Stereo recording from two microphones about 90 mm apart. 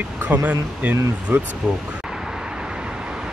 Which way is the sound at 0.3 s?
15° right (ahead or behind).